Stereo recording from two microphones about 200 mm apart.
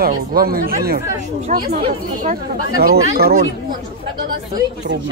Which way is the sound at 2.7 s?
50° right (ahead or behind).